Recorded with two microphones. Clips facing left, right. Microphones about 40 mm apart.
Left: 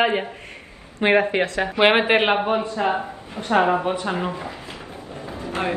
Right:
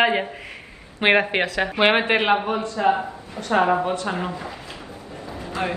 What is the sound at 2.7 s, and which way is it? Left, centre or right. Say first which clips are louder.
A man's voice: right 2 dB; left.